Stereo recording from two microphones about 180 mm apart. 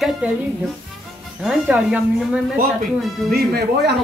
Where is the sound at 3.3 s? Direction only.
60° right (ahead or behind).